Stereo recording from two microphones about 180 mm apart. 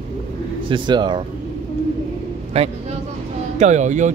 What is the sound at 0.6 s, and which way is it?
Speech, 25° right (ahead or behind).